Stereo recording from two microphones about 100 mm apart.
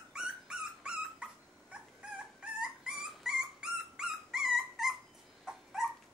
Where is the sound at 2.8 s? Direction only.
5° right (ahead or behind).